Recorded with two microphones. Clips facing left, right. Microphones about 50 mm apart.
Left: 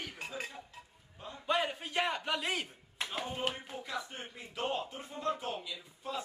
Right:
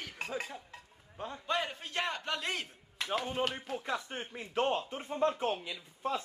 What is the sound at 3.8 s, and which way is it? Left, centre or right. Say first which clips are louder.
Speech: right 2 dB; right.